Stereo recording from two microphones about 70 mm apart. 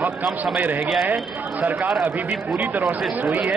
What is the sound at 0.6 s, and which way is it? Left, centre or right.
Speech, right.